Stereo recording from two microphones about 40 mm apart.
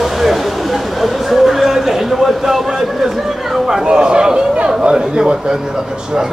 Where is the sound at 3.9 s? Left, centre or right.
Right.